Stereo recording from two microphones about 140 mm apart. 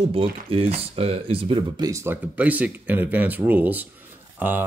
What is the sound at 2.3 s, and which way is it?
Speech, 10° right (ahead or behind).